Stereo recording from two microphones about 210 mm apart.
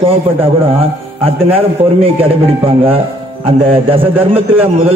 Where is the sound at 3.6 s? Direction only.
25° right (ahead or behind).